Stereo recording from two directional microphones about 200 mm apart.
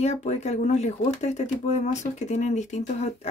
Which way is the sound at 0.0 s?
35° left (ahead or behind).